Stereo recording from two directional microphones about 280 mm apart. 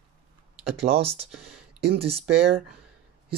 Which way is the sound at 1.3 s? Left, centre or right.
Right.